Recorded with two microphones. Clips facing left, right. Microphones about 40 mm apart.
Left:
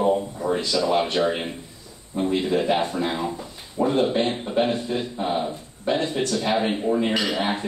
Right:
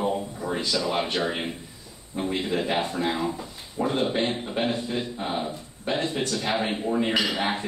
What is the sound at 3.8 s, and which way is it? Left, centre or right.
Speech, right.